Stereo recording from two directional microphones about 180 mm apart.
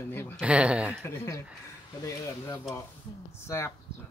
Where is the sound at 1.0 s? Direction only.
15° left (ahead or behind).